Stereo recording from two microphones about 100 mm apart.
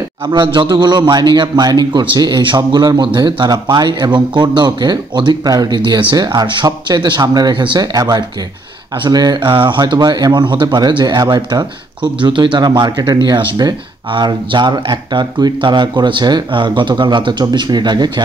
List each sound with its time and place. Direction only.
0.3 s a man's voice: 50° right (ahead or behind)